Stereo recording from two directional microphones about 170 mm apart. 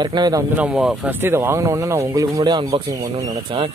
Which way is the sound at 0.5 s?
5° right (ahead or behind).